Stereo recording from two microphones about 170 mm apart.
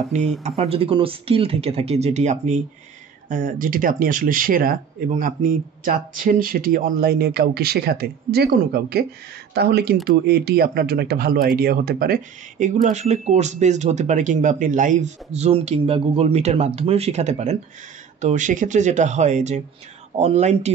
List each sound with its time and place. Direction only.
0.1 s speech: 40° right (ahead or behind)